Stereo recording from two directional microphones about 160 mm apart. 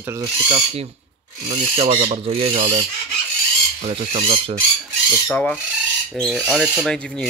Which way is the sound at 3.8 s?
45° right (ahead or behind).